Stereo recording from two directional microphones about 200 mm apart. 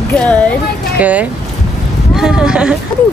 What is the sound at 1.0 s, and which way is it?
Speech, 5° right (ahead or behind).